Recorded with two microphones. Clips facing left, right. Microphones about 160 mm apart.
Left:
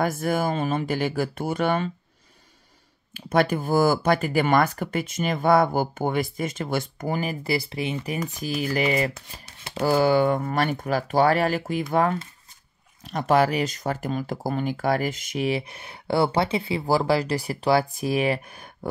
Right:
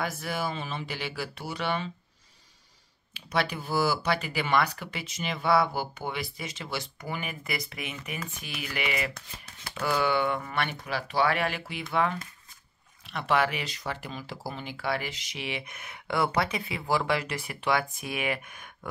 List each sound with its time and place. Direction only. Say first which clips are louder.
0.0 s speech: left 8 dB; 50° left (ahead or behind)
3.2 s speech: left 8 dB; 50° left (ahead or behind)